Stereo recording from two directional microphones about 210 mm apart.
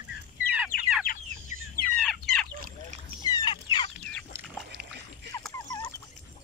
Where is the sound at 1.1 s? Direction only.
40° left (ahead or behind).